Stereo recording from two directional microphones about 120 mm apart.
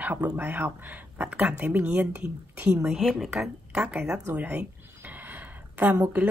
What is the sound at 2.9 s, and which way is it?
A woman's voice, 5° right (ahead or behind).